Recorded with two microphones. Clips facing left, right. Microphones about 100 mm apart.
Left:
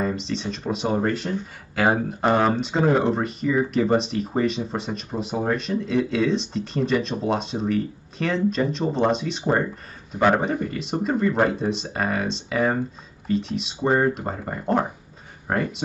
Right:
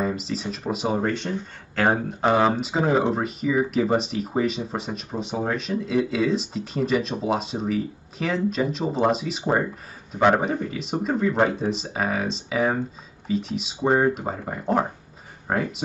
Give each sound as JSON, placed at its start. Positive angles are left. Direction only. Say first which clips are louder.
{"t": 0.0, "sound": "speech", "louder": "left 1 dB", "side_deg": -5}